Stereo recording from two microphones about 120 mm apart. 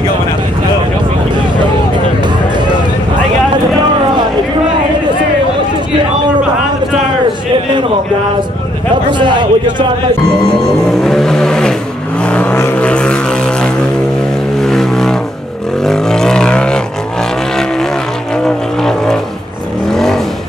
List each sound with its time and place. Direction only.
9.2 s a sound: 40° right (ahead or behind)
11.1 s vehicle: 5° left (ahead or behind)
18.4 s vehicle: 5° left (ahead or behind)